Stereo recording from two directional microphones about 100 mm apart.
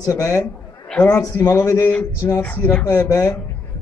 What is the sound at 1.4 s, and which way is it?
A man's voice, 25° left (ahead or behind).